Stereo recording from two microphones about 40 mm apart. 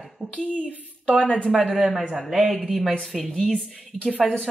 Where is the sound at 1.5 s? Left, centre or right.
Centre.